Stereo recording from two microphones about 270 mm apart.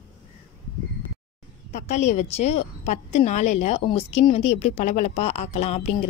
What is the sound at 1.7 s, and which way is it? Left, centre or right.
Speech, left.